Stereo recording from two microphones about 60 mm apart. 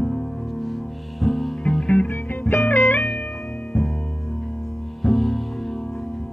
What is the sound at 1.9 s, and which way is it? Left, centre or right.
Music, left.